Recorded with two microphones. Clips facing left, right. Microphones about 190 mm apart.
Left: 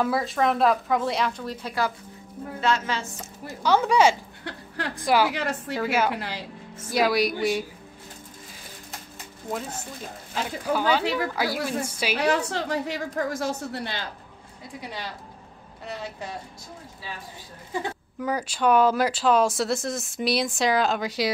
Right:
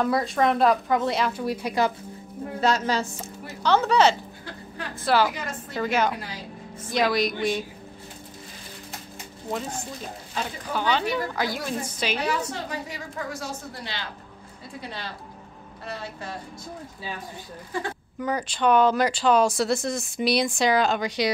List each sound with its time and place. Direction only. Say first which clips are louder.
0.0 s speech: right 1 dB; centre (ahead or behind)
2.6 s a woman's voice: right 2 dB; 40° right (ahead or behind)
3.6 s a woman's voice: even; 10° left (ahead or behind)
4.5 s speech: left 5 dB; 80° left
5.0 s a woman's voice: even; 10° left (ahead or behind)
5.3 s a woman's voice: left 6 dB; 70° left (ahead or behind)
5.8 s a woman's voice: right 1 dB; 5° left (ahead or behind)
6.1 s a woman's voice: left 3 dB; 70° left (ahead or behind)
6.9 s a woman's voice: left 1 dB; 10° left (ahead or behind)
9.5 s a woman's voice: right 1 dB; 5° left (ahead or behind)
12.2 s a woman's voice: left 4 dB; 75° left (ahead or behind)
14.8 s a woman's voice: even; 15° left (ahead or behind)
18.2 s speech: even; 5° left (ahead or behind)